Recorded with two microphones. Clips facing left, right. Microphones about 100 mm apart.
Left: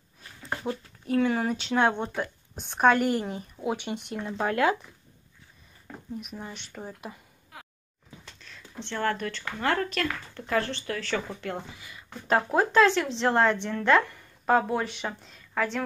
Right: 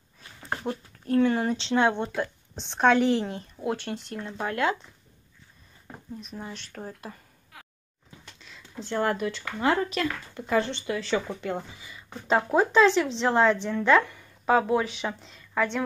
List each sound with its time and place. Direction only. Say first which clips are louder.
1.0 s speech: right 2 dB; 5° left (ahead or behind); by 4.6 s 20° left (ahead or behind)
5.9 s a sound: left 1 dB; 25° right (ahead or behind)
6.3 s speech: right 1 dB; centre (ahead or behind)
8.4 s a sound: even; 5° right (ahead or behind)
8.9 s speech: right 3 dB; 20° right (ahead or behind)
9.3 s a woman's voice: right 3 dB; 10° right (ahead or behind)
12.4 s speech: right 2 dB; 10° right (ahead or behind)
12.7 s a woman's voice: even; centre (ahead or behind)